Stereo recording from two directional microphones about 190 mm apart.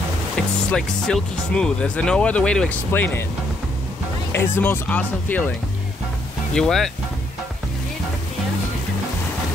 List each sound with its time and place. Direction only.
0.7 s speech: 5° left (ahead or behind)
4.3 s speech: 10° left (ahead or behind)
6.5 s speech: centre (ahead or behind)